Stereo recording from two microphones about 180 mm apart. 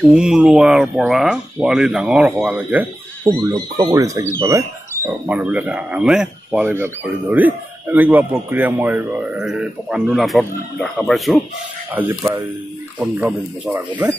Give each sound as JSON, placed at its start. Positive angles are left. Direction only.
{"t": 0.1, "sound": "speech", "side_deg": -5}
{"t": 3.3, "sound": "speech", "side_deg": -20}